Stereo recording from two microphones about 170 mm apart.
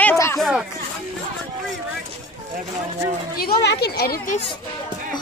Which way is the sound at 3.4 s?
70° left (ahead or behind).